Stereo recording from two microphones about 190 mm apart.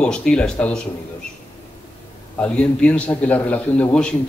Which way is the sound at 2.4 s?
5° left (ahead or behind).